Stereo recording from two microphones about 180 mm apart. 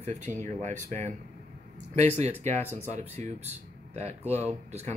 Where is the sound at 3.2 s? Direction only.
40° right (ahead or behind).